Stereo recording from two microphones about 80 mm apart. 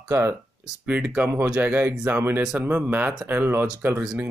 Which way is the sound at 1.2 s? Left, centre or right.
Right.